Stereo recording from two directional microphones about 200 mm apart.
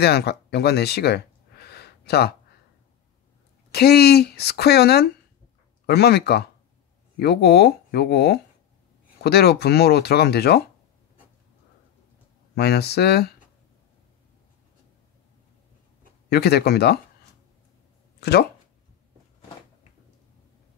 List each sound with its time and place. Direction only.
0.0 s speech: 55° left (ahead or behind)
3.7 s speech: 50° left (ahead or behind)
12.5 s speech: 55° left (ahead or behind)
16.3 s speech: 55° left (ahead or behind)